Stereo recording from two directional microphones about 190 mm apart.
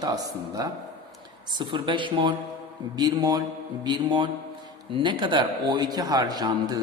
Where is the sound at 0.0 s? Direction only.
20° right (ahead or behind).